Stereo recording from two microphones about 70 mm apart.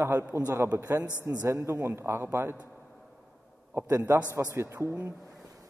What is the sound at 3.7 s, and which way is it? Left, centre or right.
A man's voice, right.